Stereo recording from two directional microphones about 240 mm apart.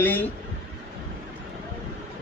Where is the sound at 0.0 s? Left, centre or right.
Centre.